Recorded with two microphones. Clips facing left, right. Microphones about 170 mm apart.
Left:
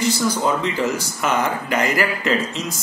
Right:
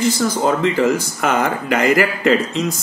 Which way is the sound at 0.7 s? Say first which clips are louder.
Right 6 dB; 55° right (ahead or behind).